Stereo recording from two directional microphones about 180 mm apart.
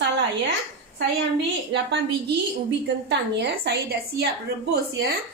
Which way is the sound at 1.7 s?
80° right.